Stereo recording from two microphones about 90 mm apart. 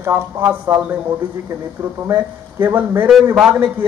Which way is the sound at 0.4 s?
15° right (ahead or behind).